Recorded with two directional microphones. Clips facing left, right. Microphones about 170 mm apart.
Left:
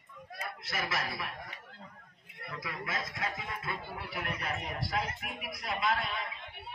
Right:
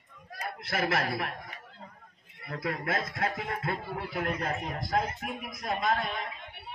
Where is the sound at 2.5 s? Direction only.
55° right (ahead or behind).